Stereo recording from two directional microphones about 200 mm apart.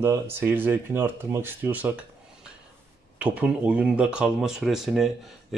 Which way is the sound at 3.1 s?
5° right (ahead or behind).